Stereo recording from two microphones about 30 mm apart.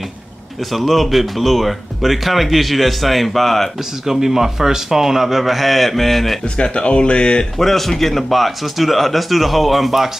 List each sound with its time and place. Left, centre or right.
0.7 s speech: centre
4.1 s a man's voice: centre
6.6 s speech: left
7.5 s speech: centre